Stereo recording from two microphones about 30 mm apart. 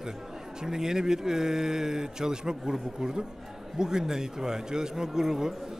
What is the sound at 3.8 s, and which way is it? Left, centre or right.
A man's voice, centre.